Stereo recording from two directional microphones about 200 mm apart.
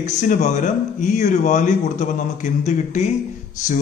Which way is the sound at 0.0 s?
35° left (ahead or behind).